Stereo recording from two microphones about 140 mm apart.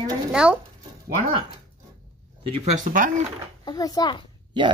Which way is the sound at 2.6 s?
70° right (ahead or behind).